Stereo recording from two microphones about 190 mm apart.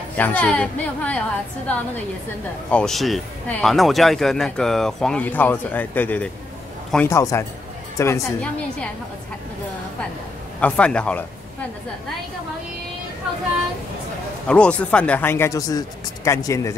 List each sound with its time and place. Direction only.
0.1 s speech: 10° left (ahead or behind)
2.7 s speech: centre (ahead or behind)
10.6 s speech: 5° left (ahead or behind)
14.5 s speech: 5° left (ahead or behind)